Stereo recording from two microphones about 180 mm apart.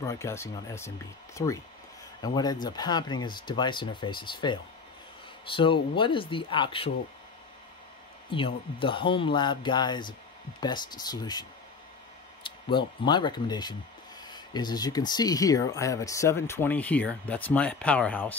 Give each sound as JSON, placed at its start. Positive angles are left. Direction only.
{"t": 0.0, "sound": "speech", "side_deg": 15}
{"t": 8.3, "sound": "speech", "side_deg": 30}
{"t": 12.4, "sound": "speech", "side_deg": 25}